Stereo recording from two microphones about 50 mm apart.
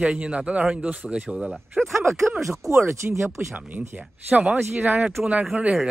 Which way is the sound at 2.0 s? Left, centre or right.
Right.